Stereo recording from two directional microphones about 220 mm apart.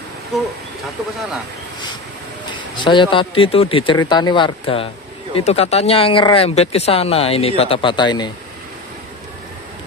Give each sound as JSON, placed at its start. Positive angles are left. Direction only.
{"t": 0.3, "sound": "speech", "side_deg": 0}
{"t": 2.5, "sound": "speech", "side_deg": 20}